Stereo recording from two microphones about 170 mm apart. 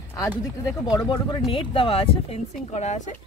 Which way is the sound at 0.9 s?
25° left (ahead or behind).